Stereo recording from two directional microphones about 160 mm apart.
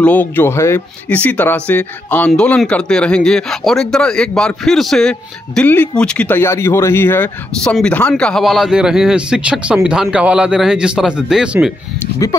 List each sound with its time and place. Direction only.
0.0 s speech: 10° left (ahead or behind); by 11.7 s 5° right (ahead or behind)
12.2 s speech: 20° left (ahead or behind)